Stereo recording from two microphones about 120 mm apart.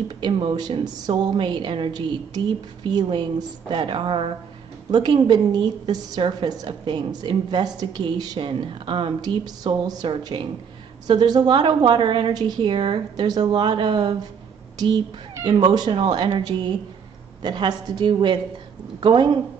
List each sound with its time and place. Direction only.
0.2 s a woman's voice: 45° right (ahead or behind)
15.4 s a woman's voice: 35° right (ahead or behind)